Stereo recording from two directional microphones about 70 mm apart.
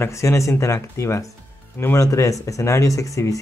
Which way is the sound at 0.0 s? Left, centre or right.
Left.